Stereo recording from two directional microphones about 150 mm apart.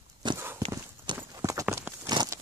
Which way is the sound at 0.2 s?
30° right (ahead or behind).